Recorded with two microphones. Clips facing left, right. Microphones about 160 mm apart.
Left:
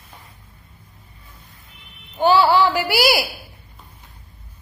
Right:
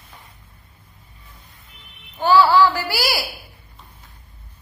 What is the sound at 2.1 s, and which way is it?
A woman's voice, 20° left (ahead or behind).